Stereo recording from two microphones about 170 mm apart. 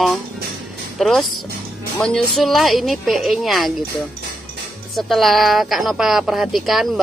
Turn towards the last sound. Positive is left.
turn(degrees=0)  # may be behind; listen again after turning